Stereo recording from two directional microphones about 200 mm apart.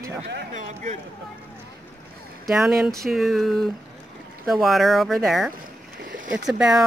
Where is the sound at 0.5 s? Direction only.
35° right (ahead or behind).